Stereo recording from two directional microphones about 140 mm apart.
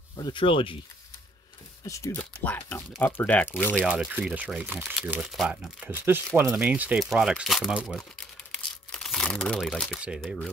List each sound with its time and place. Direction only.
0.1 s speech: 35° left (ahead or behind)
1.9 s speech: 20° left (ahead or behind)
3.8 s speech: 5° right (ahead or behind)
8.5 s crumpling: 5° left (ahead or behind)
9.9 s speech: 5° right (ahead or behind)